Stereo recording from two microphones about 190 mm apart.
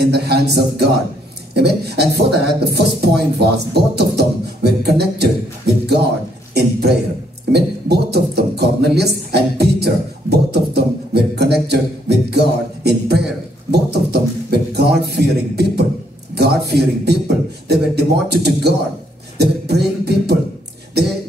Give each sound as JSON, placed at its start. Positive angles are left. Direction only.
{"t": 0.0, "sound": "a sound", "side_deg": -60}
{"t": 1.5, "sound": "a man's voice", "side_deg": -60}
{"t": 19.3, "sound": "music", "side_deg": -60}